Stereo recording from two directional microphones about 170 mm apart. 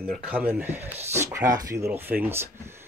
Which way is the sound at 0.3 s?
10° right (ahead or behind).